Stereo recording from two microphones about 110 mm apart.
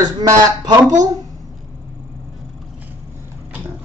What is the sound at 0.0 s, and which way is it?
Speech, 35° right (ahead or behind).